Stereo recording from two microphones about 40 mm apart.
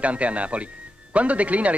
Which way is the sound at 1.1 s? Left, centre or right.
Right.